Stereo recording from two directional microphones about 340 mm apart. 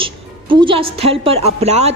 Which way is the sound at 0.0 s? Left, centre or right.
Centre.